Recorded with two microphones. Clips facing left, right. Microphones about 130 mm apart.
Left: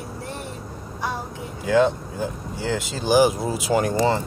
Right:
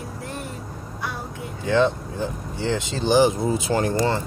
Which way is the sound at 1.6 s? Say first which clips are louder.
Left 1 dB; 10° left (ahead or behind).